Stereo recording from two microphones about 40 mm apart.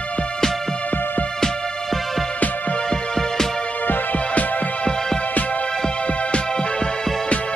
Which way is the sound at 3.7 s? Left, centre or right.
Left.